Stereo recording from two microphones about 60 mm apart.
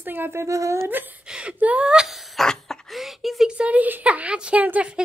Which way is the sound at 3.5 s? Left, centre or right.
Right.